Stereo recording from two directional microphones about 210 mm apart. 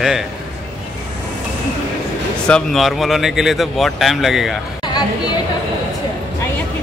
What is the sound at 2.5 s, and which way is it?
Speech, centre (ahead or behind).